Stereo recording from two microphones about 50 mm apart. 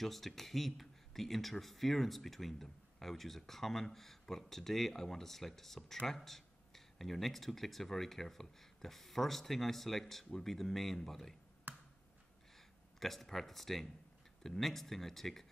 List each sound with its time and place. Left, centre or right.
0.0 s speech: centre
11.7 s a sound: right
12.5 s speech: centre